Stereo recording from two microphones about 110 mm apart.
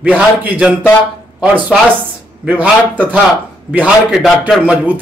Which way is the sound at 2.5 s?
15° right (ahead or behind).